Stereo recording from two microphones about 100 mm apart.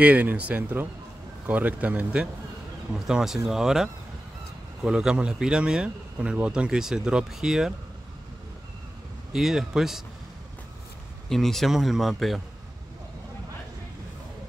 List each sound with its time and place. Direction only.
0.0 s speech: 15° right (ahead or behind)
9.3 s speech: 5° right (ahead or behind)
11.2 s speech: centre (ahead or behind)